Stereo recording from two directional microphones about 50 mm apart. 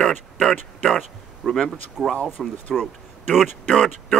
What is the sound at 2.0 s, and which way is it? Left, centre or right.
Speech, centre.